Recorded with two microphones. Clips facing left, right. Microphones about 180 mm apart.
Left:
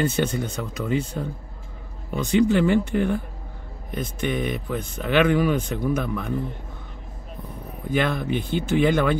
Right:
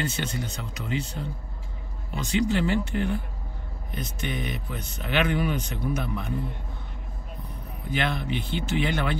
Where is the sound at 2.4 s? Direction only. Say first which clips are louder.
Left 6 dB; 55° left (ahead or behind).